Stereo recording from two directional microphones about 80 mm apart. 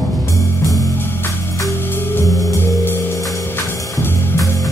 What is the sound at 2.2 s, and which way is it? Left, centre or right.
Music, left.